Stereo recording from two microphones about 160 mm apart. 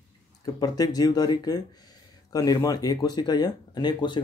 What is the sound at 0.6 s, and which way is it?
Speech, 25° left (ahead or behind).